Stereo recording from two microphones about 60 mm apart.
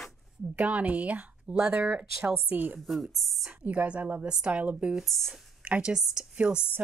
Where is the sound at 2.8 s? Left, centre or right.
Centre.